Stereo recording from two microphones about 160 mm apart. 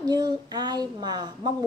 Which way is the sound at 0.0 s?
25° right (ahead or behind).